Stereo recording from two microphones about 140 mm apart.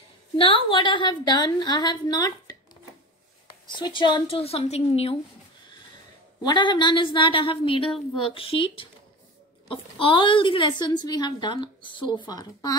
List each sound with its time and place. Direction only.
0.7 s a woman's voice: 35° left (ahead or behind)
3.7 s a woman's voice: 35° left (ahead or behind)
6.4 s a woman's voice: 30° left (ahead or behind)